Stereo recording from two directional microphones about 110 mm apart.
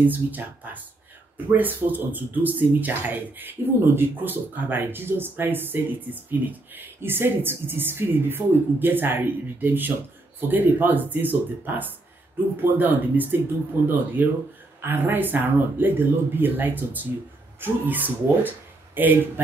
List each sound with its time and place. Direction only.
0.0 s speech: 15° right (ahead or behind)